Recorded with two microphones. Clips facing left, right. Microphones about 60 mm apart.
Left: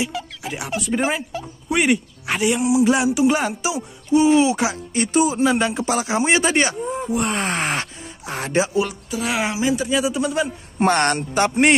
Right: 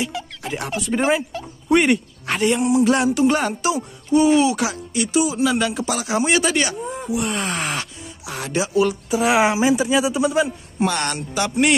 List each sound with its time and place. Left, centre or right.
0.1 s speech: centre; by 8.6 s left
9.1 s a man's voice: centre
10.8 s speech: left